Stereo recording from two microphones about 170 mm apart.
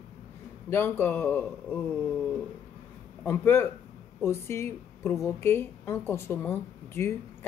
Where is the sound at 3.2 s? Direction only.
10° left (ahead or behind).